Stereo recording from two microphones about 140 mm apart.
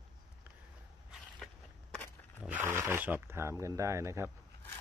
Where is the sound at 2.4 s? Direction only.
15° right (ahead or behind).